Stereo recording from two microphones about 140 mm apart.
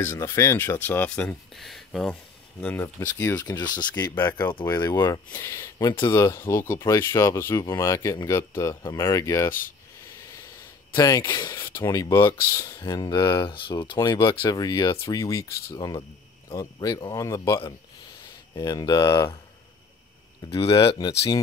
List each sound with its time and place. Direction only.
0.0 s speech: 20° left (ahead or behind); by 2.1 s centre (ahead or behind)
2.6 s speech: 15° left (ahead or behind); by 3.8 s 30° left (ahead or behind)
3.9 s speech: 15° left (ahead or behind)
4.6 s speech: 25° left (ahead or behind)
6.1 s speech: 20° left (ahead or behind)
11.0 s speech: 25° left (ahead or behind)
18.6 s speech: 30° left (ahead or behind)
20.4 s speech: 45° left (ahead or behind)